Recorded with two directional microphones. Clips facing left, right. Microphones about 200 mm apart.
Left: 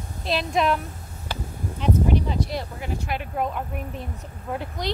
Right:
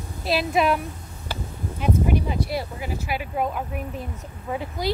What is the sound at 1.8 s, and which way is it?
A woman's voice, 10° right (ahead or behind).